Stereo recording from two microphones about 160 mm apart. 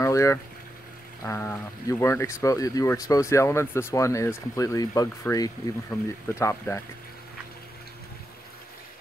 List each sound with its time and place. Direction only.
0.0 s boiling: 20° left (ahead or behind)
1.2 s speech: 15° left (ahead or behind)
5.9 s speech: 5° left (ahead or behind)
6.2 s speech: 20° left (ahead or behind)